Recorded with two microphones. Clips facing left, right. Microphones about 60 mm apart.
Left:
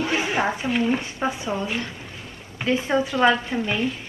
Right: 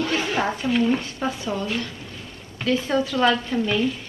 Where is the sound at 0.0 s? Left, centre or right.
Centre.